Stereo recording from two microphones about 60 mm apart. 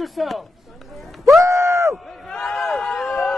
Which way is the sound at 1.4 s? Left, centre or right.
Right.